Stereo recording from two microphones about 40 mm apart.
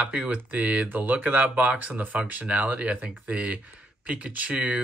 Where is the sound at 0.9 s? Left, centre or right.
Right.